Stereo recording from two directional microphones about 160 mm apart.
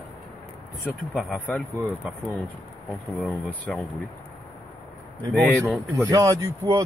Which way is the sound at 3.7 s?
5° left (ahead or behind).